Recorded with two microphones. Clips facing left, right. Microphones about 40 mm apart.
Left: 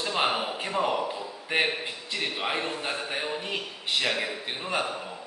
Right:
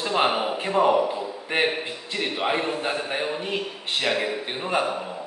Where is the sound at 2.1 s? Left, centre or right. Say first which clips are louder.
Right 5 dB; centre.